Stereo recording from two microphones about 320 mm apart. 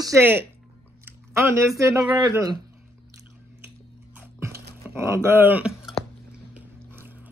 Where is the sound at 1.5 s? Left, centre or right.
Centre.